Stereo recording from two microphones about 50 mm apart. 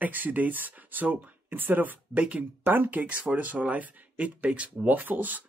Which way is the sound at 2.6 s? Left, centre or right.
Right.